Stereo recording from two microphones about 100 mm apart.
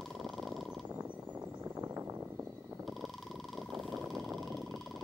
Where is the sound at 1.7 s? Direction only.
30° right (ahead or behind).